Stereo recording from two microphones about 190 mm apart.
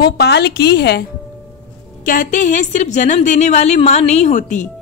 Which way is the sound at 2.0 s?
45° left (ahead or behind).